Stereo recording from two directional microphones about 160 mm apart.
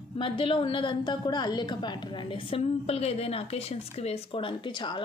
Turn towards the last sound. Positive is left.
turn(degrees=30)  # may be behind; listen again after turning